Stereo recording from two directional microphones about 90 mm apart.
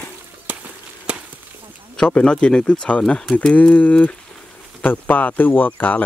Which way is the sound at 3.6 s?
20° left (ahead or behind).